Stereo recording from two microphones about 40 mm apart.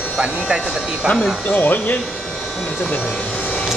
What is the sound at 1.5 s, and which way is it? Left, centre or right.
Speech, left.